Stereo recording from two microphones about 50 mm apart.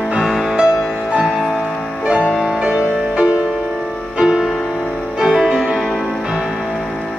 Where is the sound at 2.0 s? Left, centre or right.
Centre.